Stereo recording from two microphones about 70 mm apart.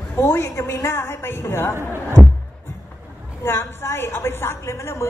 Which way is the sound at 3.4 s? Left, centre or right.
Left.